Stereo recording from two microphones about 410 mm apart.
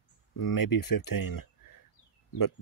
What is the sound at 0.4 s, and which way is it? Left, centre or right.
Speech, left.